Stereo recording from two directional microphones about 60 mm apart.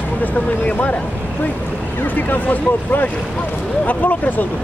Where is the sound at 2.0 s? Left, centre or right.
Left.